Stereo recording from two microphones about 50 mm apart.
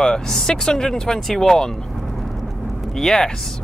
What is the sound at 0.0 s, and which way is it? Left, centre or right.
Speech, centre.